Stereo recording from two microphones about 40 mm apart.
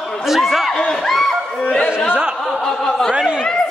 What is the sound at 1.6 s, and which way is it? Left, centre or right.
Chatter, left.